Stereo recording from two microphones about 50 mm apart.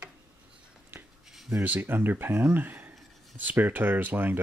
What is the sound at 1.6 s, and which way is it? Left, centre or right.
Speech, right.